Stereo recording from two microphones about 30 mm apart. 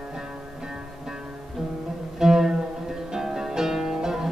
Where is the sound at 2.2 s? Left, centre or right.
Centre.